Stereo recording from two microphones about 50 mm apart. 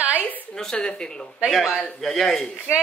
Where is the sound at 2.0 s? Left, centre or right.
Centre.